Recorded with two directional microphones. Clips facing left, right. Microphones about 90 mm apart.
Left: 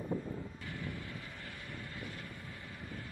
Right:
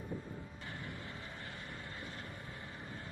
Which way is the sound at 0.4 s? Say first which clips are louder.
Left 3 dB; 20° right (ahead or behind).